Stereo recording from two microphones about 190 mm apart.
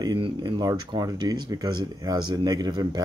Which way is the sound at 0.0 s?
20° right (ahead or behind).